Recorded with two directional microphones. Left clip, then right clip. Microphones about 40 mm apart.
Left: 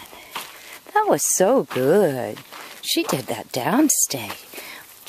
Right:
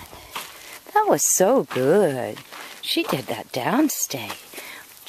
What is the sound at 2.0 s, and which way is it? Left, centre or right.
Speech, left.